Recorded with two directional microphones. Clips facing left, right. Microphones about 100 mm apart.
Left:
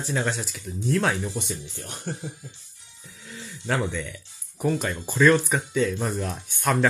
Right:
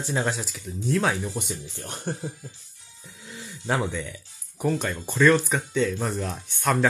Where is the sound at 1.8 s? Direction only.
45° right (ahead or behind).